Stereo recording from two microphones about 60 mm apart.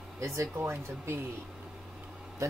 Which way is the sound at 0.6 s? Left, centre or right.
Right.